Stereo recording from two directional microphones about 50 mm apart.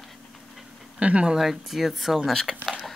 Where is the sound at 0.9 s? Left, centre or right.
Right.